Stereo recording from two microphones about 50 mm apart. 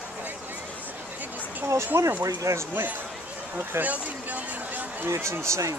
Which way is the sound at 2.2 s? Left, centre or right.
Right.